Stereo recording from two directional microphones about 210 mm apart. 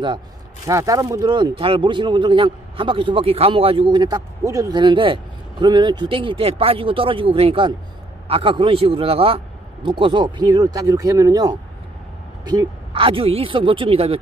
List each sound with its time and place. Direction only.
0.7 s speech: 15° right (ahead or behind)